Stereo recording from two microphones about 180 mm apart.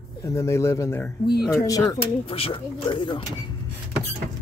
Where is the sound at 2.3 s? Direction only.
30° left (ahead or behind).